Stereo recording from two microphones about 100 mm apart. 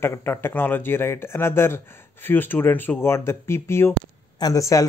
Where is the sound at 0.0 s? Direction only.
25° left (ahead or behind).